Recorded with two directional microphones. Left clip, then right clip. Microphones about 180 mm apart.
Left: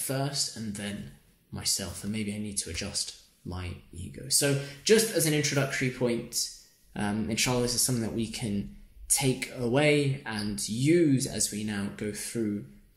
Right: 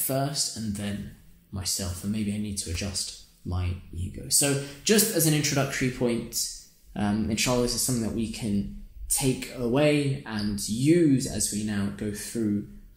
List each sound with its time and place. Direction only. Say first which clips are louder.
0.0 s speech: right 3 dB; centre (ahead or behind)
1.5 s speech: even; 15° left (ahead or behind)